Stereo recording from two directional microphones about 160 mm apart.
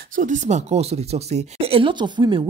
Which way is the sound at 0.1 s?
55° right (ahead or behind).